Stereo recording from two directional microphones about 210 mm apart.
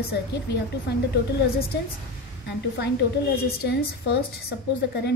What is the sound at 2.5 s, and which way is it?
A woman's voice, 55° left (ahead or behind).